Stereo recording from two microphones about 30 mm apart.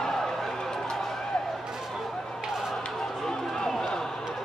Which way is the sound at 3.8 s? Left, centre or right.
Left.